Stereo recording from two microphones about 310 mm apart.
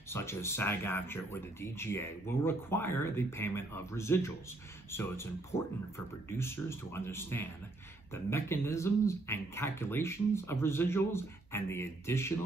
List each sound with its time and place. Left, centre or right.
0.1 s speech: centre